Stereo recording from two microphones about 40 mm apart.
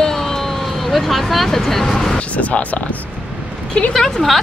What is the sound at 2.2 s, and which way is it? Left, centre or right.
Speech, left.